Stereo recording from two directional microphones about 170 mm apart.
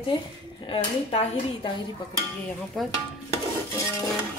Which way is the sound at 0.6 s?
35° left (ahead or behind).